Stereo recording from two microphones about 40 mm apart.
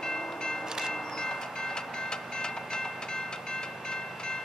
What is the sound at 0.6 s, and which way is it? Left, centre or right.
Train, centre.